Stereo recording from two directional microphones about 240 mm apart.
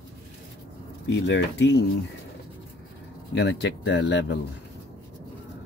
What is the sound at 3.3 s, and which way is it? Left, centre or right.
Speech, left.